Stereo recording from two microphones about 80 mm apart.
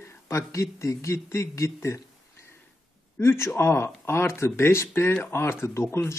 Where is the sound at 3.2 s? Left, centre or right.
Left.